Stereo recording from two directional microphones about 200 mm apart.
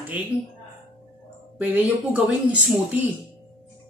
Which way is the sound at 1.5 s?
10° right (ahead or behind).